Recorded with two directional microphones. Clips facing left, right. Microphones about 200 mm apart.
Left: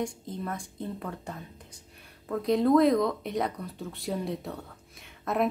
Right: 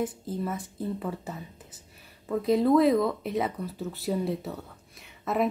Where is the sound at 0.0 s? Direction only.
5° right (ahead or behind).